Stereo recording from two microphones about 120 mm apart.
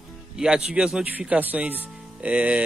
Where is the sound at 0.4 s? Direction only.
5° right (ahead or behind).